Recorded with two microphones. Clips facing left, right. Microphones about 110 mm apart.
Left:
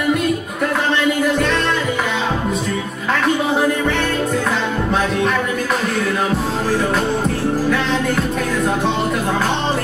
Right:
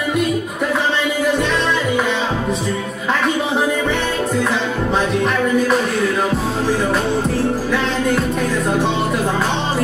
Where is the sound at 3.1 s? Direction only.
Centre (ahead or behind).